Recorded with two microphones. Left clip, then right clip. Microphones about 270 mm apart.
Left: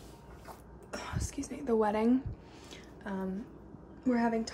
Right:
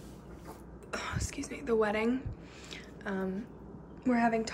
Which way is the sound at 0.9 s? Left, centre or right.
Centre.